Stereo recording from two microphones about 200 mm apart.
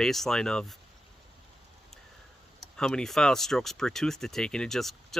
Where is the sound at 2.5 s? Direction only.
5° left (ahead or behind).